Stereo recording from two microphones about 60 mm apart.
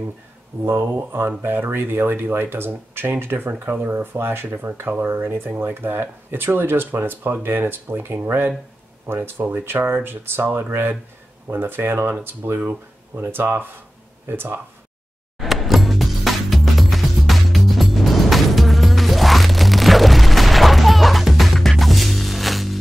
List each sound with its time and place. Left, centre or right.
0.7 s speech: right
15.3 s music: centre